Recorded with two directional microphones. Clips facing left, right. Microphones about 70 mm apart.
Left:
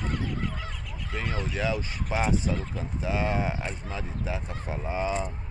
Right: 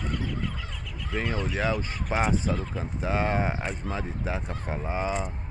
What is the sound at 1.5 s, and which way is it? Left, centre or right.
Speech, right.